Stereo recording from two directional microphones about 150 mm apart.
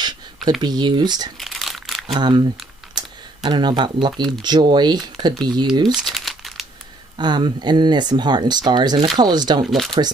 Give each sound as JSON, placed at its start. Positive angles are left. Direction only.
{"t": 0.6, "sound": "speech", "side_deg": -30}
{"t": 1.4, "sound": "crumpling", "side_deg": 0}
{"t": 2.1, "sound": "speech", "side_deg": -30}
{"t": 5.9, "sound": "crumpling", "side_deg": 0}
{"t": 7.2, "sound": "speech", "side_deg": -30}
{"t": 9.7, "sound": "speech", "side_deg": 0}